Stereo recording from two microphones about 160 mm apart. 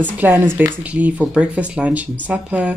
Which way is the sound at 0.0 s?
10° right (ahead or behind).